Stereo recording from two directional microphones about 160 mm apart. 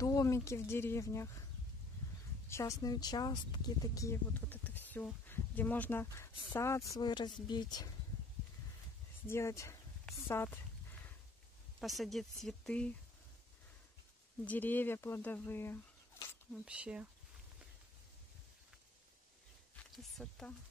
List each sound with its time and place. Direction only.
0.0 s speech: 20° left (ahead or behind)
2.5 s speech: 20° left (ahead or behind)
9.3 s speech: 15° left (ahead or behind)
11.8 s speech: centre (ahead or behind)
14.4 s speech: 10° left (ahead or behind)
16.6 s speech: 5° right (ahead or behind)
20.0 s speech: 5° left (ahead or behind)